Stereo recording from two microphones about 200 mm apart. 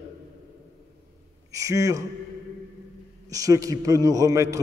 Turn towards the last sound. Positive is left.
turn(degrees=-15)  # may be behind; listen again after turning